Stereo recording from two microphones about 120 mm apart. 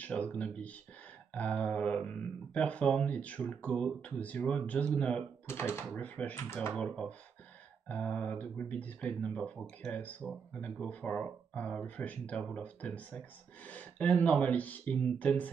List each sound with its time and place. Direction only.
0.0 s speech: 10° left (ahead or behind)
5.5 s speech: 20° left (ahead or behind)
6.8 s speech: 10° left (ahead or behind)